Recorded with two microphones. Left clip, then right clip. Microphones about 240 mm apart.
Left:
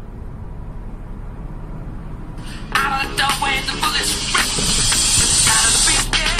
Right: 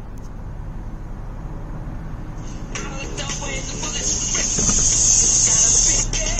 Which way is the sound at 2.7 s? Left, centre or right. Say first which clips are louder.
Left 13 dB; left.